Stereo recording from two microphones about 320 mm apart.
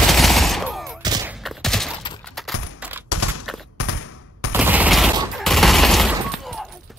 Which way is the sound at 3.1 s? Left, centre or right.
Left.